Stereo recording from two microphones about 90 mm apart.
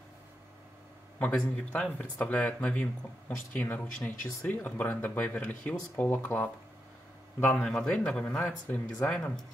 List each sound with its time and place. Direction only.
1.2 s speech: 10° left (ahead or behind)
7.6 s speech: 5° left (ahead or behind)